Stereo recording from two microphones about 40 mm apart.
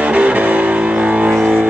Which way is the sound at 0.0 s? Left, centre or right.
Right.